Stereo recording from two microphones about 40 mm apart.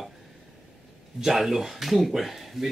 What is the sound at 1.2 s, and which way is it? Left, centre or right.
Speech, centre.